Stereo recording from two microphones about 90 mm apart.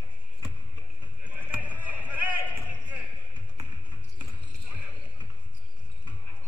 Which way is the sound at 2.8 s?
15° right (ahead or behind).